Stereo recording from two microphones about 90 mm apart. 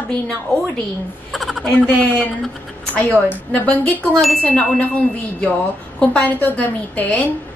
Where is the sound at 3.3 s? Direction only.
15° left (ahead or behind).